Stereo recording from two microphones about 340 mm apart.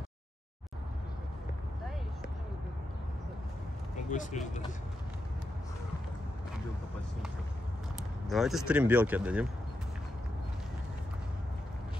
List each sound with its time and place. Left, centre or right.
4.1 s speech: left
8.3 s speech: centre